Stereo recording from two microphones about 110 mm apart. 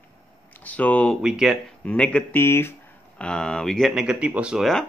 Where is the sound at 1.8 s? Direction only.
10° left (ahead or behind).